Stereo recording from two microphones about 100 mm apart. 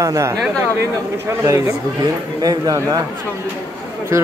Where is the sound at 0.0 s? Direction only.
30° right (ahead or behind).